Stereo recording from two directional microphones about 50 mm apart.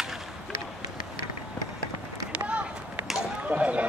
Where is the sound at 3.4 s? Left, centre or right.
Right.